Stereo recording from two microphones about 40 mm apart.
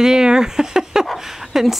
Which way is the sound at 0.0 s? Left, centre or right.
Centre.